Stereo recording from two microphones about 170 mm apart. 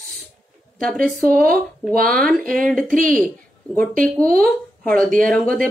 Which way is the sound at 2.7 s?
Centre (ahead or behind).